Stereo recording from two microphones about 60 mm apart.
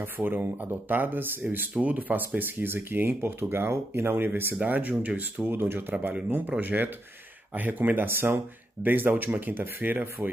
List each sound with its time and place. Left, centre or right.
0.0 s speech: right
4.6 s speech: right
5.4 s speech: right